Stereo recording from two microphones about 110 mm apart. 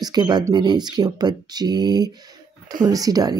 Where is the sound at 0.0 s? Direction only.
40° right (ahead or behind).